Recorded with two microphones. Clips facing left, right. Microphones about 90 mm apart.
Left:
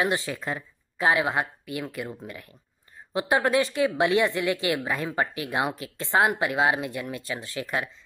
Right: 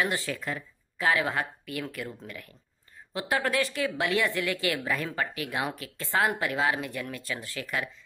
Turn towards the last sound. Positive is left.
turn(degrees=25)  # may be behind; listen again after turning